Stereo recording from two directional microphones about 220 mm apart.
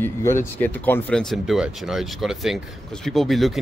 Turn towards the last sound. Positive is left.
turn(degrees=0)  # may be behind; listen again after turning